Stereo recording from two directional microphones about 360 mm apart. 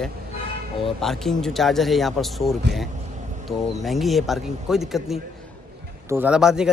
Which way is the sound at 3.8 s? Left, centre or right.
Centre.